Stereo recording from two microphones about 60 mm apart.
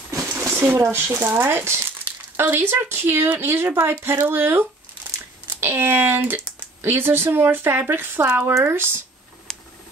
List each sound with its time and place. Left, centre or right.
0.1 s a sound: right
0.8 s speech: right
2.0 s speech: right